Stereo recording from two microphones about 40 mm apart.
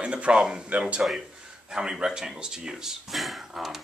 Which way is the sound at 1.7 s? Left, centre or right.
Centre.